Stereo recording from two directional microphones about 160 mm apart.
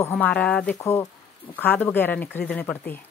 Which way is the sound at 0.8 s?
20° left (ahead or behind).